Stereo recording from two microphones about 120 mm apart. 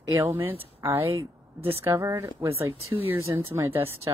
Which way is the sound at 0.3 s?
20° right (ahead or behind).